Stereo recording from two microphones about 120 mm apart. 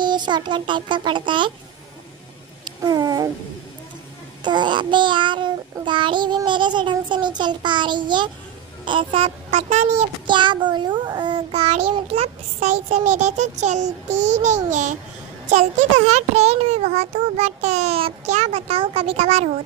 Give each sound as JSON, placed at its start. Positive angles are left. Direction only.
{"t": 0.0, "sound": "child singing", "side_deg": -40}
{"t": 2.6, "sound": "a sound", "side_deg": -35}
{"t": 4.4, "sound": "child singing", "side_deg": -40}
{"t": 8.8, "sound": "speech", "side_deg": -45}
{"t": 9.5, "sound": "a child's voice", "side_deg": -75}
{"t": 10.2, "sound": "a child's voice", "side_deg": -40}
{"t": 15.5, "sound": "a child's voice", "side_deg": -70}